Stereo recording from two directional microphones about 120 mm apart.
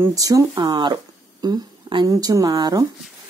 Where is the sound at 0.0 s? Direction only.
30° right (ahead or behind).